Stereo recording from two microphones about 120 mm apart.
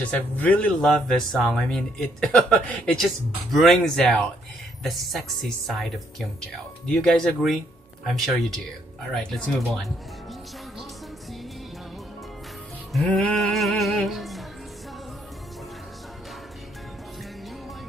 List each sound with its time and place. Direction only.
0.1 s speech: 10° left (ahead or behind)
13.1 s music: centre (ahead or behind)